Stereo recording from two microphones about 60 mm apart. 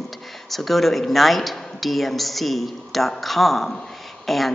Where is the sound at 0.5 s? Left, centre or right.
Centre.